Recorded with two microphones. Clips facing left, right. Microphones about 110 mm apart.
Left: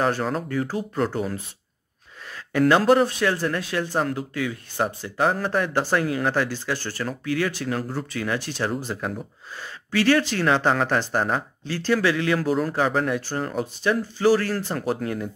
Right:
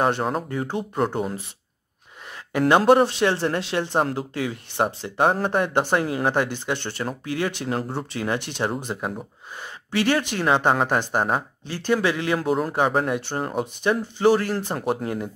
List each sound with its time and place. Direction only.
0.0 s speech: 30° right (ahead or behind)
2.5 s speech: 25° right (ahead or behind)